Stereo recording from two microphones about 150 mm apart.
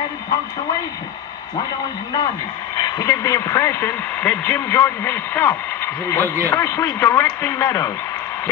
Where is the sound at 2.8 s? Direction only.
25° left (ahead or behind).